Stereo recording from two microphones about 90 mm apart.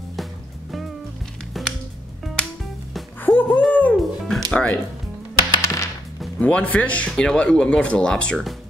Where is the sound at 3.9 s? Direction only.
Centre (ahead or behind).